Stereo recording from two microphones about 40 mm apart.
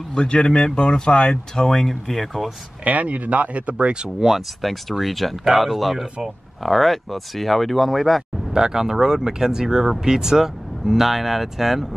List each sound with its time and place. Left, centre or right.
0.1 s speech: left; by 2.5 s centre
2.8 s speech: right
4.3 s speech: centre
8.5 s speech: centre